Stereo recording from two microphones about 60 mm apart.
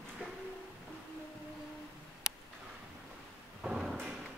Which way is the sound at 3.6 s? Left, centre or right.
Centre.